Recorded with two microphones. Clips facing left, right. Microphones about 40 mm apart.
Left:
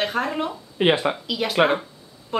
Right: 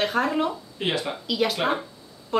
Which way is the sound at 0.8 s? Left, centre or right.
Left.